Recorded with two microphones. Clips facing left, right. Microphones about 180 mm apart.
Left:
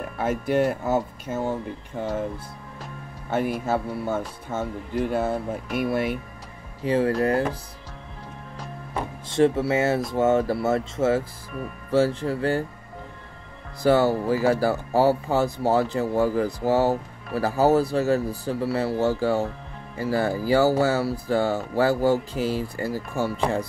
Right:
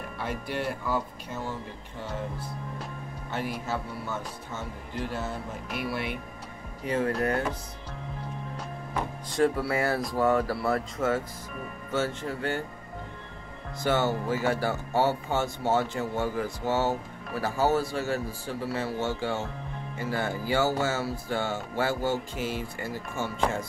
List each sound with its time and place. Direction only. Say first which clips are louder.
0.2 s speech: left 10 dB; 45° left (ahead or behind)
3.3 s speech: left 8 dB; 50° left (ahead or behind)
5.8 s speech: left 8 dB; 50° left (ahead or behind)
6.8 s music: left 6 dB; 30° left (ahead or behind)
9.3 s speech: left 5 dB; 25° left (ahead or behind)
11.9 s music: left 8 dB; 30° left (ahead or behind)
13.8 s music: left 7 dB; 35° left (ahead or behind)